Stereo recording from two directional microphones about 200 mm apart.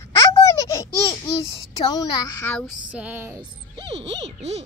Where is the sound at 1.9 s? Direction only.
20° left (ahead or behind).